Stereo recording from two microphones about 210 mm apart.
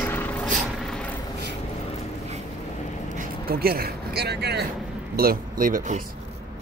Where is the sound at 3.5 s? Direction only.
45° right (ahead or behind).